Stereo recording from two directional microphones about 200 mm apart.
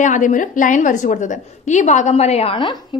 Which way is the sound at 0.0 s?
40° left (ahead or behind).